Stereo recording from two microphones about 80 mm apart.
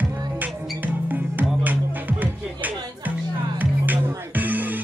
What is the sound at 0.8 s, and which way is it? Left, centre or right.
Music, right.